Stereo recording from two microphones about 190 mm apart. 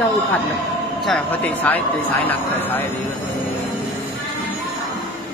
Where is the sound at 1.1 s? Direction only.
10° left (ahead or behind).